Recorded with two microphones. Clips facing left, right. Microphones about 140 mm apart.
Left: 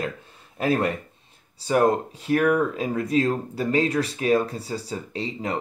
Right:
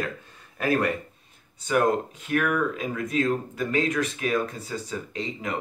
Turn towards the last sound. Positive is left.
turn(degrees=35)  # may be behind; listen again after turning